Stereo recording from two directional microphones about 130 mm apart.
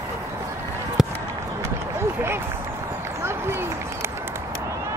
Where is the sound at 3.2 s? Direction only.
20° right (ahead or behind).